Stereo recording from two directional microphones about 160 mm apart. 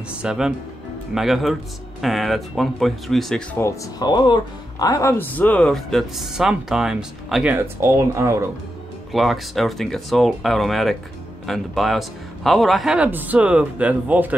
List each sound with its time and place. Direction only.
0.2 s speech: 5° right (ahead or behind)
3.5 s speech: 20° left (ahead or behind); by 7.5 s 5° right (ahead or behind)
7.5 s a man's voice: 15° right (ahead or behind)
9.1 s a man's voice: centre (ahead or behind)